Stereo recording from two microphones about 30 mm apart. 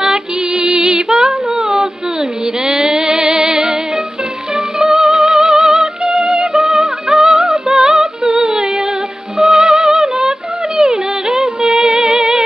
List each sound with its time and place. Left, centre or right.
0.0 s music: right
1.5 s humming: centre
2.6 s music: right
4.7 s music: right
5.6 s music: centre
7.7 s a sound: right
8.3 s female singing: right
9.5 s music: centre